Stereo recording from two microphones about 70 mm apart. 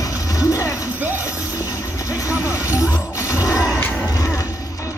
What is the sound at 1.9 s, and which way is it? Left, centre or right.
Vehicle, left.